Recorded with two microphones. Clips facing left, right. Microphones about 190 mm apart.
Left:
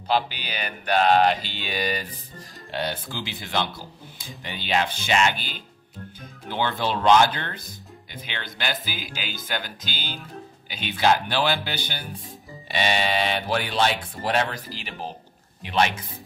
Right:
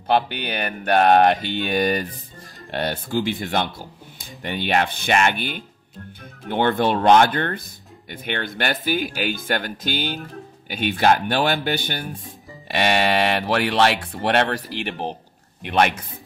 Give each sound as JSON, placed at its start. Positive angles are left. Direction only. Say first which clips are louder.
{"t": 0.1, "sound": "speech", "louder": "right 4 dB", "side_deg": -55}
{"t": 4.4, "sound": "speech", "louder": "right 4 dB", "side_deg": -60}